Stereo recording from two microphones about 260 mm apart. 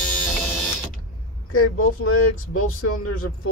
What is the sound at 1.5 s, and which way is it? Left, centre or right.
Speech, left.